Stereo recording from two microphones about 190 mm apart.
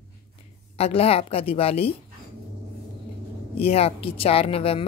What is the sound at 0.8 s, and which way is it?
Speech, 30° left (ahead or behind).